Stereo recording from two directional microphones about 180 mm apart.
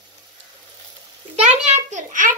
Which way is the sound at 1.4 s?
40° right (ahead or behind).